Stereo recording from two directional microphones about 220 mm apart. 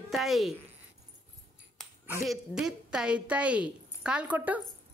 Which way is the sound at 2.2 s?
Centre (ahead or behind).